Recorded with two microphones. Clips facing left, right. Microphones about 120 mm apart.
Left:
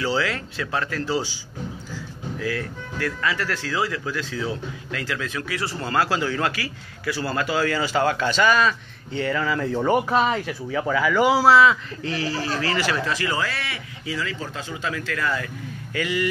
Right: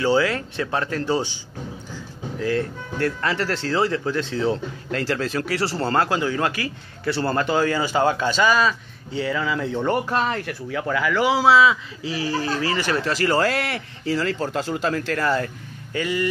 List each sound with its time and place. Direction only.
0.0 s speech: 25° right (ahead or behind)
6.0 s a man's voice: 20° right (ahead or behind); by 11.4 s 10° left (ahead or behind)
11.4 s speech: 5° right (ahead or behind)
12.3 s speech: 25° right (ahead or behind)
13.4 s a man's voice: 50° right (ahead or behind); by 16.3 s 35° right (ahead or behind)